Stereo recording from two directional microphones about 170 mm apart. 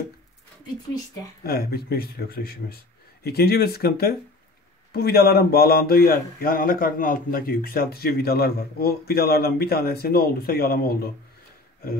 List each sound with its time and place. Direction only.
1.4 s speech: 65° left (ahead or behind)